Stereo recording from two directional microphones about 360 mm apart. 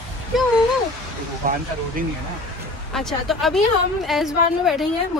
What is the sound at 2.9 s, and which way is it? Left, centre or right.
Speech, centre.